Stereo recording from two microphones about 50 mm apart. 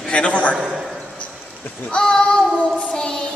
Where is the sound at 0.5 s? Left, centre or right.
Centre.